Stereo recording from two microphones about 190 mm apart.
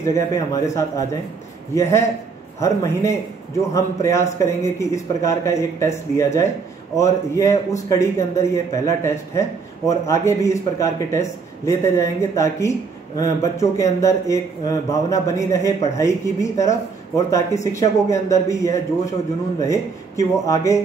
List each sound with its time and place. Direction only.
0.0 s speech: 15° left (ahead or behind)